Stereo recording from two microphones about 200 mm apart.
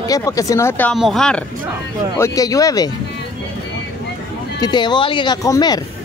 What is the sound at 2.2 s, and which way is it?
Speech, 15° left (ahead or behind).